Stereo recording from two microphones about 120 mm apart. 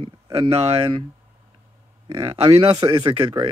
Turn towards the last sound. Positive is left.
turn(degrees=-45)  # may be behind; listen again after turning